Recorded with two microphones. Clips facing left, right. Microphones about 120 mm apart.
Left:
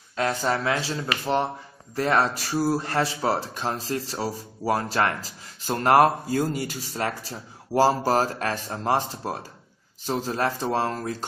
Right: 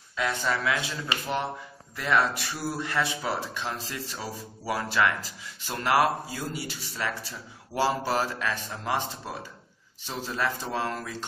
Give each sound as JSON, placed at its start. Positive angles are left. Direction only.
{"t": 0.1, "sound": "speech", "side_deg": 40}